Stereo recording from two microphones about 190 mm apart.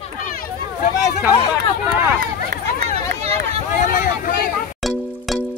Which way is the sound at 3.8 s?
45° left (ahead or behind).